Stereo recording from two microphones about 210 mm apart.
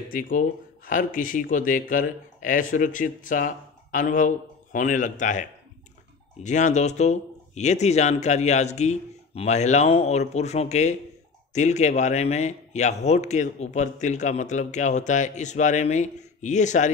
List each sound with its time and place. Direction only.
0.1 s speech: 40° left (ahead or behind)